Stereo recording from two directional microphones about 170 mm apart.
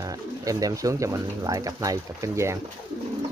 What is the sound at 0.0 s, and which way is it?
Speech, 20° right (ahead or behind).